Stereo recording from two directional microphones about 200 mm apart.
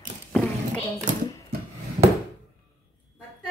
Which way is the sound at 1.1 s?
40° right (ahead or behind).